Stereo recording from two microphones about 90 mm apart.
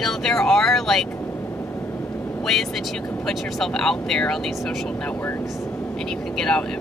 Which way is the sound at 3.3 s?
5° left (ahead or behind).